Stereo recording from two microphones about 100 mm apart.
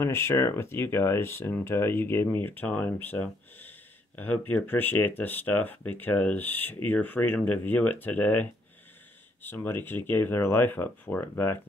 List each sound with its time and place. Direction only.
0.0 s speech: 25° left (ahead or behind)